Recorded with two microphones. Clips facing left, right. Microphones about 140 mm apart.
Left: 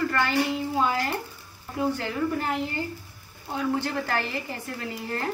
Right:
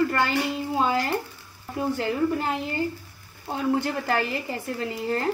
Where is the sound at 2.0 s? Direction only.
20° right (ahead or behind).